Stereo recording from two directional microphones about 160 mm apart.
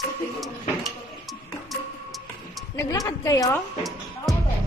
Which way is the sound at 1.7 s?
Centre (ahead or behind).